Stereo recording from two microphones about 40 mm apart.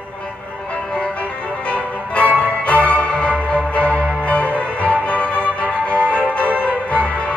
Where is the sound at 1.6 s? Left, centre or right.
Left.